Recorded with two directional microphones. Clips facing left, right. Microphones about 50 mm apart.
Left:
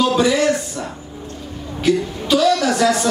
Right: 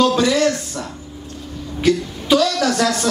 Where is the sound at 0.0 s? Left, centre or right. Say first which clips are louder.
Even; centre.